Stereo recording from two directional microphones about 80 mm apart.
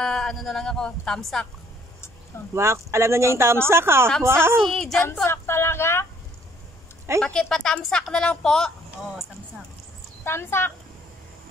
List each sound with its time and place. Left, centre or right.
0.0 s a woman's voice: centre
2.5 s speech: right
4.6 s a woman's voice: centre
5.2 s speech: left
7.2 s a woman's voice: centre
10.2 s speech: left